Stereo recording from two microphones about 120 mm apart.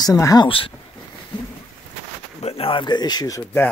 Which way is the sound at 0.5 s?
50° left (ahead or behind).